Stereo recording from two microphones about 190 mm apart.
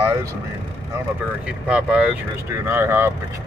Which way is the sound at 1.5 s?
5° right (ahead or behind).